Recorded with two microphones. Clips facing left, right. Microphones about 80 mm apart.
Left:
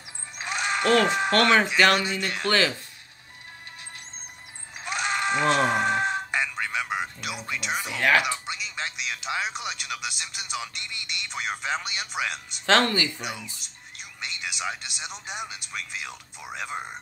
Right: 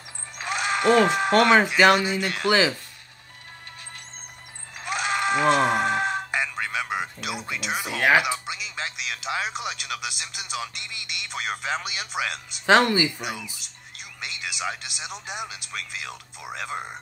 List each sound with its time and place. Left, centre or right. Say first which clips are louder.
0.5 s speech: right 2 dB; centre
4.8 s a sound: right 2 dB; centre
8.5 s speech: right 1 dB; centre
12.6 s speech: right 3 dB; centre
13.2 s speech: right 2 dB; centre